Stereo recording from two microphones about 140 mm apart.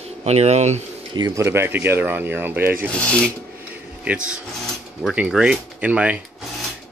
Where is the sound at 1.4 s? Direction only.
15° right (ahead or behind).